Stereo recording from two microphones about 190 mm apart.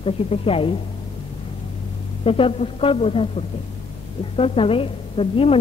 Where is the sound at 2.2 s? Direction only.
30° left (ahead or behind).